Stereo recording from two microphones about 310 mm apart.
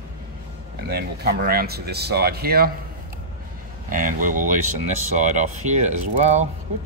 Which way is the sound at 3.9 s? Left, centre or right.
Right.